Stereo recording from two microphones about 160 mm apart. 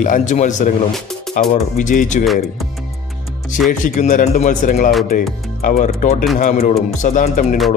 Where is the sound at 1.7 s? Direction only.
50° left (ahead or behind).